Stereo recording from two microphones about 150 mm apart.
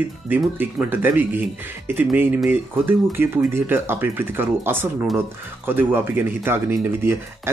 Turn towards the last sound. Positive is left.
turn(degrees=-15)  # may be behind; listen again after turning